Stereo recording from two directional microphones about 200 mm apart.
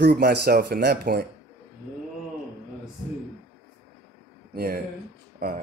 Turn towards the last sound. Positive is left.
turn(degrees=-50)  # may be behind; listen again after turning